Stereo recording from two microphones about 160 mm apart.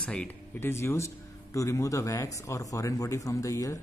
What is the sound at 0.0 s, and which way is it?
Speech, 5° left (ahead or behind).